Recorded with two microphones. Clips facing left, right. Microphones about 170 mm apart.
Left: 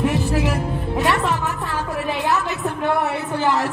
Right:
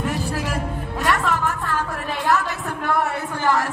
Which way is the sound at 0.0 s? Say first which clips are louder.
Left 5 dB; 20° left (ahead or behind).